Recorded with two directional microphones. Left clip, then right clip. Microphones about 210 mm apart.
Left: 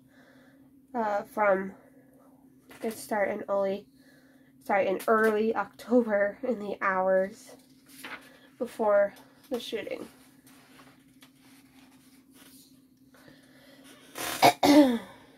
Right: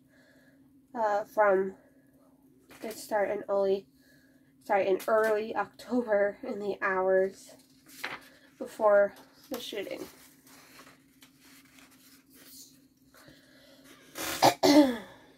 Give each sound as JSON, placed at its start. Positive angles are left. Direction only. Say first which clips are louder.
{"t": 0.9, "sound": "a woman's voice", "louder": "right 2 dB", "side_deg": 25}
{"t": 3.0, "sound": "a woman's voice", "louder": "even", "side_deg": 30}
{"t": 8.5, "sound": "a woman's voice", "louder": "right 1 dB", "side_deg": 25}
{"t": 14.4, "sound": "throat clearing", "louder": "left 2 dB", "side_deg": 35}